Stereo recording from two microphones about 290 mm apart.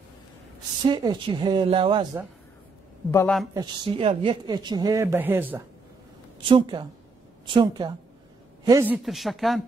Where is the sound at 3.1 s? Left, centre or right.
Centre.